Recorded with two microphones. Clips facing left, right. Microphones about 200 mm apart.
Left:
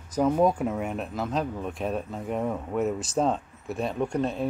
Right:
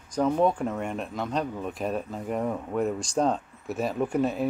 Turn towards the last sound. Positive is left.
turn(degrees=-5)  # may be behind; listen again after turning